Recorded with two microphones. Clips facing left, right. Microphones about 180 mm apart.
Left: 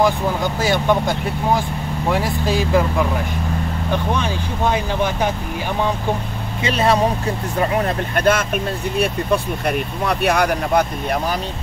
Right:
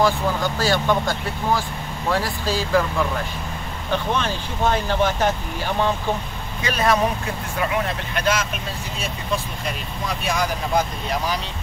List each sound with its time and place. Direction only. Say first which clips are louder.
0.0 s speech: left 2 dB; 20° left (ahead or behind)
3.9 s speech: left 1 dB; 10° left (ahead or behind)
6.6 s speech: left 3 dB; 25° left (ahead or behind)
7.5 s speech: left 4 dB; 40° left (ahead or behind)
8.9 s speech: left 8 dB; 65° left (ahead or behind)